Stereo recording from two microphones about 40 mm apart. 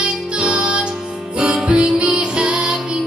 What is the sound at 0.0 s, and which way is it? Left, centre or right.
Music, right.